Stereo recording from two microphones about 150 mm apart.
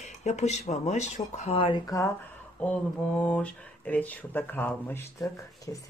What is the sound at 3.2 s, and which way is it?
Speech, 10° left (ahead or behind).